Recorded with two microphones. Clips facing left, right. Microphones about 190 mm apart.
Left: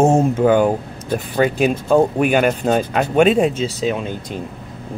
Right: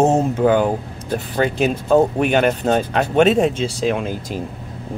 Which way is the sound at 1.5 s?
10° left (ahead or behind).